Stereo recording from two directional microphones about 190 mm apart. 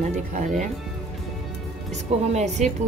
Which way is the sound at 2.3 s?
40° right (ahead or behind).